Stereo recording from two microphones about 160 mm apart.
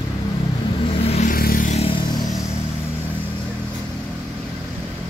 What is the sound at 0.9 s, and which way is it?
Vehicle, 40° left (ahead or behind).